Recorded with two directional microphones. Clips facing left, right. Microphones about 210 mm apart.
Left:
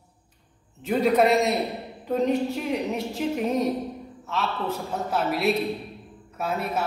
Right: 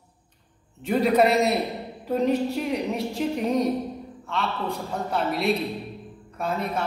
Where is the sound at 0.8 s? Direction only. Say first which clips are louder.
Even; centre (ahead or behind).